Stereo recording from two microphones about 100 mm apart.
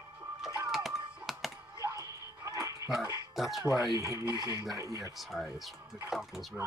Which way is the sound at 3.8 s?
35° right (ahead or behind).